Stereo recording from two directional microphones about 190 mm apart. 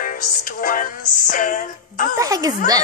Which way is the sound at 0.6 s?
45° left (ahead or behind).